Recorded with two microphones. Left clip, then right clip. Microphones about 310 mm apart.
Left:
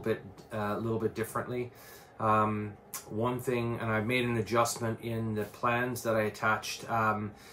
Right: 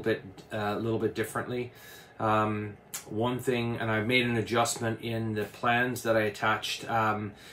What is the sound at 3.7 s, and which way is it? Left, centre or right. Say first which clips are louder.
Speech: right 4 dB; centre.